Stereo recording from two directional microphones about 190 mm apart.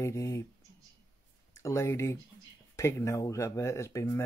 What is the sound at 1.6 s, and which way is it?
Speech, 15° left (ahead or behind).